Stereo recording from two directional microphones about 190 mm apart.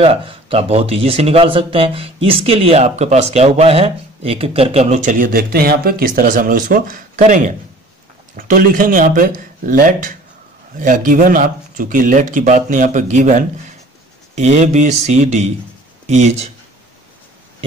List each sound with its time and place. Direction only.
0.0 s a man's voice: 30° right (ahead or behind)